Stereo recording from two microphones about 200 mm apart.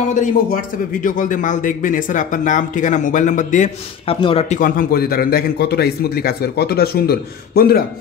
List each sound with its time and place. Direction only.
0.1 s speech: 40° left (ahead or behind)
4.6 s a man's voice: 45° left (ahead or behind)